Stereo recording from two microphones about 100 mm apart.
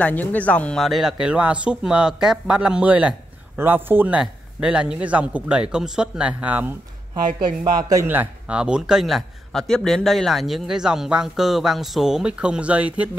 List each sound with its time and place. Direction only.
0.0 s speech: 15° left (ahead or behind)
0.7 s a man's voice: centre (ahead or behind)
1.2 s a man's voice: 10° right (ahead or behind)
7.3 s speech: 45° right (ahead or behind)
8.1 s a man's voice: 15° right (ahead or behind)